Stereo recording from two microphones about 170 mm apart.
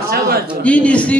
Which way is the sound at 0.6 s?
5° left (ahead or behind).